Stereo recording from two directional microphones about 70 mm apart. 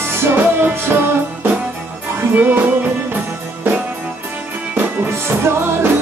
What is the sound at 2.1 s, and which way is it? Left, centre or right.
Music, right.